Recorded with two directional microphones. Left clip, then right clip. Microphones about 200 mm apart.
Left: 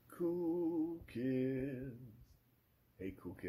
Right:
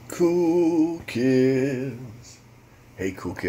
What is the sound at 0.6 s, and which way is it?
Speech, centre (ahead or behind).